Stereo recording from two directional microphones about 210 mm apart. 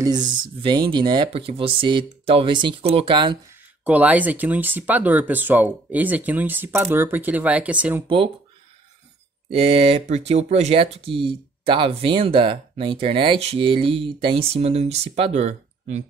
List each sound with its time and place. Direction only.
0.0 s speech: 20° right (ahead or behind)
3.8 s speech: 5° right (ahead or behind)
9.5 s speech: 25° right (ahead or behind)